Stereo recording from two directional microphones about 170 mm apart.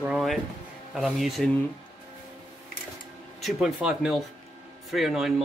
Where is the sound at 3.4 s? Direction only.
Centre (ahead or behind).